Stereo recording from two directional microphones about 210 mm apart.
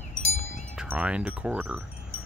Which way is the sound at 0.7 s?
5° right (ahead or behind).